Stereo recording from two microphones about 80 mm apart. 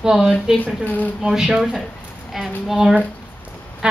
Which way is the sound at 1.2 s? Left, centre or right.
Centre.